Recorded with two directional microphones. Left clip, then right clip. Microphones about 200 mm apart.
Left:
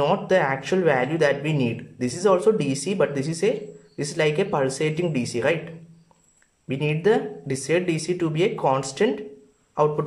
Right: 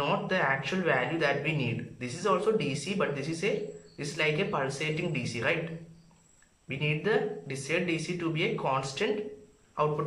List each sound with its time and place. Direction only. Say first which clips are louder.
0.0 s speech: left 8 dB; 35° left (ahead or behind)
6.7 s speech: left 8 dB; 35° left (ahead or behind)